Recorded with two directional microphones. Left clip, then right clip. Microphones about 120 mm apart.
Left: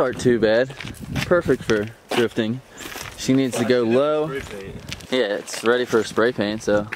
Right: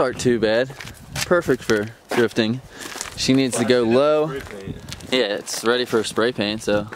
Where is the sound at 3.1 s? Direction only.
20° right (ahead or behind).